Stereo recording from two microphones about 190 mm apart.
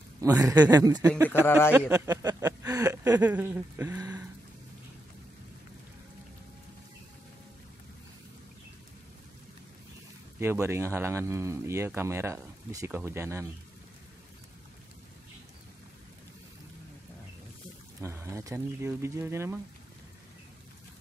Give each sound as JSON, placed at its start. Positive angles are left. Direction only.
{"t": 0.2, "sound": "speech", "side_deg": -15}
{"t": 1.2, "sound": "speech", "side_deg": 10}
{"t": 1.7, "sound": "speech", "side_deg": -10}
{"t": 10.4, "sound": "speech", "side_deg": -15}
{"t": 18.0, "sound": "speech", "side_deg": -15}